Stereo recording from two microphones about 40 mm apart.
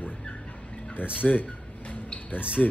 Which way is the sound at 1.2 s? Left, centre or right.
Left.